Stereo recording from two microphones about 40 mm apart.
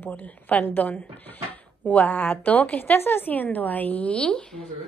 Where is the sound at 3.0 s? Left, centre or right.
Left.